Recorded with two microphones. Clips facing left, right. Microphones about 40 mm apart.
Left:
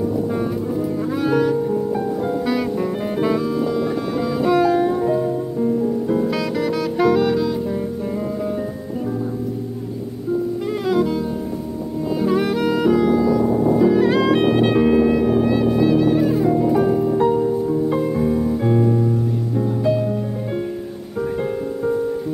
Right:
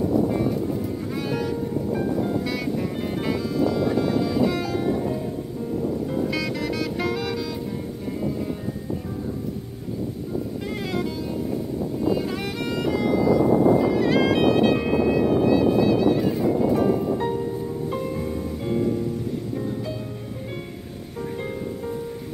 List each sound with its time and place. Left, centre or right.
1.1 s music: centre
5.0 s music: left
6.2 s music: centre
12.2 s music: centre